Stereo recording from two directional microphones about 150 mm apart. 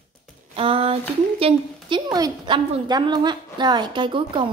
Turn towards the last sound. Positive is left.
turn(degrees=-30)  # may be behind; listen again after turning